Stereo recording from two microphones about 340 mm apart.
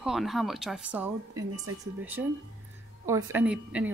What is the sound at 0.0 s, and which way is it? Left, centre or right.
A woman's voice, centre.